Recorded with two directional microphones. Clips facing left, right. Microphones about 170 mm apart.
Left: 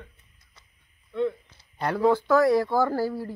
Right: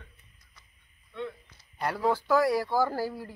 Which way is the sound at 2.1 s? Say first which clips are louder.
Left 4 dB; 10° right (ahead or behind).